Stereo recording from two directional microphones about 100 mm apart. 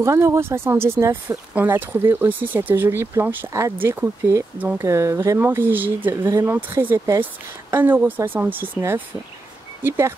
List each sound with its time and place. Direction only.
0.0 s speech: 30° right (ahead or behind)
1.5 s speech: 15° right (ahead or behind)
4.6 s speech: 15° right (ahead or behind)
4.8 s speech: 30° right (ahead or behind)